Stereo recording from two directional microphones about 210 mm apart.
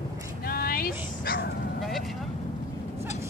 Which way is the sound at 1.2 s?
45° left (ahead or behind).